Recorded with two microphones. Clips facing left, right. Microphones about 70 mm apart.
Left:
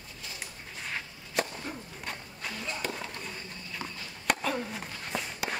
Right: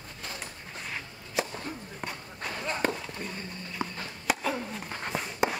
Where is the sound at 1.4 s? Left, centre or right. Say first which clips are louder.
Even; centre.